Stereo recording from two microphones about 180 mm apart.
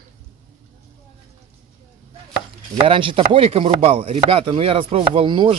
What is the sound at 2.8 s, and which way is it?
Chopping, 30° right (ahead or behind).